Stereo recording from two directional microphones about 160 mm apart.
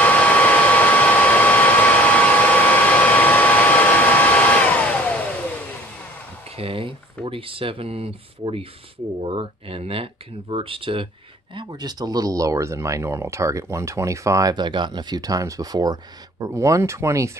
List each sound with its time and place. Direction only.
0.0 s hair dryer: 10° left (ahead or behind)
6.5 s a sound: 35° right (ahead or behind)
9.2 s speech: 35° right (ahead or behind); by 17.3 s 20° right (ahead or behind)